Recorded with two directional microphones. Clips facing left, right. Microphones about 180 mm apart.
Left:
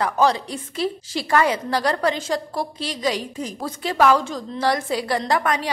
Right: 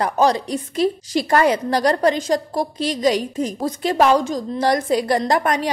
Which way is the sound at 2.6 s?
15° right (ahead or behind).